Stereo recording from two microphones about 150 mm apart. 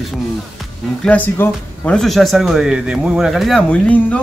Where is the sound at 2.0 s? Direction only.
Centre (ahead or behind).